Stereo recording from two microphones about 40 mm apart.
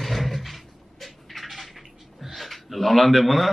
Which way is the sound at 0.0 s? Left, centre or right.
Centre.